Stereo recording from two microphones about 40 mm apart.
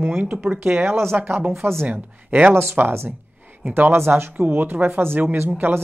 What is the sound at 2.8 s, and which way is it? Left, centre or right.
Speech, right.